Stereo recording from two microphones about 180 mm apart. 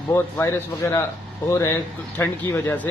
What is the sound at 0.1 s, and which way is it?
Speech, 15° left (ahead or behind).